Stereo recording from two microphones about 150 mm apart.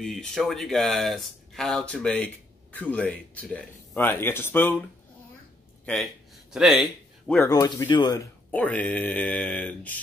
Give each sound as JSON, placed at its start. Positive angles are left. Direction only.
{"t": 0.0, "sound": "speech", "side_deg": 0}
{"t": 5.9, "sound": "speech", "side_deg": 0}
{"t": 7.4, "sound": "speech", "side_deg": 25}
{"t": 8.5, "sound": "speech", "side_deg": 10}